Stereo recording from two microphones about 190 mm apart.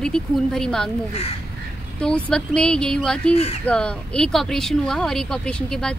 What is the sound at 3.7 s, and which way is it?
A woman's voice, 5° left (ahead or behind).